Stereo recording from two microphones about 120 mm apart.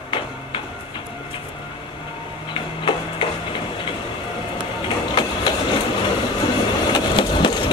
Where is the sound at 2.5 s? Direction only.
45° left (ahead or behind).